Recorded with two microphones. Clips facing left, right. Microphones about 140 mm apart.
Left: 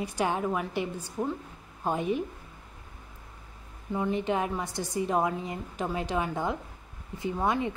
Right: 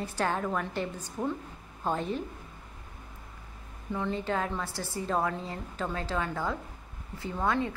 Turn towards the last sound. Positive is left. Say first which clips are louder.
# left 1 dB
turn(degrees=15)  # may be behind; listen again after turning